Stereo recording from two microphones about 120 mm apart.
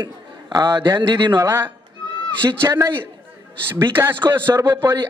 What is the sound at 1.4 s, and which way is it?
A man's voice, 25° right (ahead or behind).